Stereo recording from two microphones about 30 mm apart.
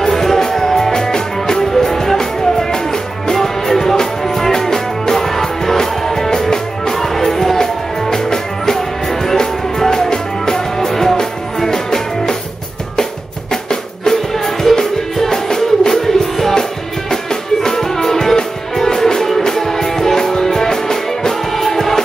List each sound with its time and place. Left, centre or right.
0.1 s music: centre
13.5 s music: left
14.3 s music: centre